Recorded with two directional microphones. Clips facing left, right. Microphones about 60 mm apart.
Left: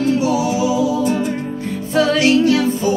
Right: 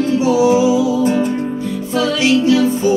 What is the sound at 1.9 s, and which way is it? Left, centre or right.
Music, left.